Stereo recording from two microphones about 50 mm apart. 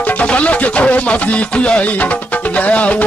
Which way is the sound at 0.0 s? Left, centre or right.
Left.